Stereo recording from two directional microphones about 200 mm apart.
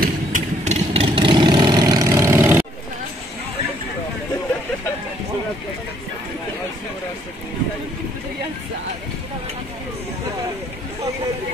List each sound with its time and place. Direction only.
0.0 s vehicle: 40° right (ahead or behind); by 2.6 s 15° right (ahead or behind)